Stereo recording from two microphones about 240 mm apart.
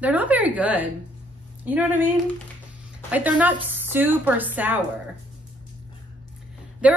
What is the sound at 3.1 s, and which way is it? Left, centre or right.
Speech, centre.